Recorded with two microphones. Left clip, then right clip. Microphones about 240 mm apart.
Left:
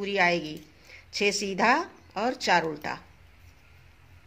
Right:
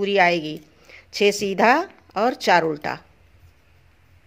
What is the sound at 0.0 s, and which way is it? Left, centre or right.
Speech, right.